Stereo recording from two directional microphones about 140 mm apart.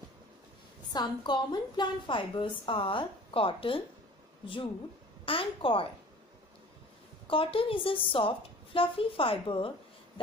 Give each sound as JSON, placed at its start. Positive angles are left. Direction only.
{"t": 0.9, "sound": "a woman's voice", "side_deg": 30}
{"t": 5.2, "sound": "a woman's voice", "side_deg": 40}
{"t": 7.2, "sound": "a woman's voice", "side_deg": 40}